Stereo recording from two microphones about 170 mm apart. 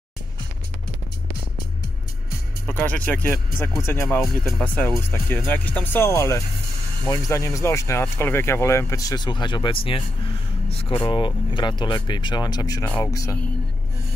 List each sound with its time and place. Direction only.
2.6 s speech: 10° left (ahead or behind)
4.2 s speech: centre (ahead or behind); by 13.4 s 20° left (ahead or behind)